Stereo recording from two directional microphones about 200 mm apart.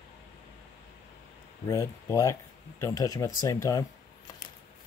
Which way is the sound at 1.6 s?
15° left (ahead or behind).